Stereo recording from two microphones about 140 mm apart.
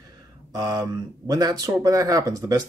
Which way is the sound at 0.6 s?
30° right (ahead or behind).